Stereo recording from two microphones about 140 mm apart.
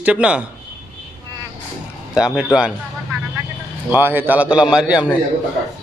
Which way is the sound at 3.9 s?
15° right (ahead or behind).